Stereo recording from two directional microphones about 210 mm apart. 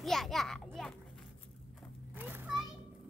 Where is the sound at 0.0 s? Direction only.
Centre (ahead or behind).